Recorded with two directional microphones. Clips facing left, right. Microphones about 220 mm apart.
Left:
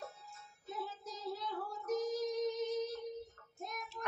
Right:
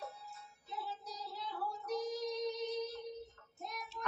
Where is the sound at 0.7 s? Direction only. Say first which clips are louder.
Left 2 dB; 45° left (ahead or behind).